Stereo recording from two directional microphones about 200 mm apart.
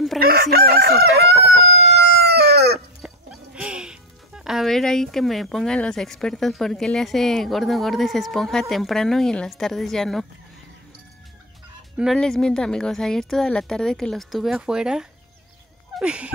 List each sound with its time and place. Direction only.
0.2 s chicken: 50° right (ahead or behind)
3.0 s speech: 5° right (ahead or behind)
12.0 s speech: centre (ahead or behind)